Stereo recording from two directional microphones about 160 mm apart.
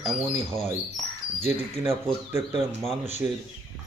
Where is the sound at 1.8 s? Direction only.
15° right (ahead or behind).